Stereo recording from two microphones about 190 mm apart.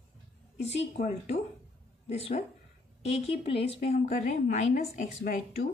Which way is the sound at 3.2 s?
30° left (ahead or behind).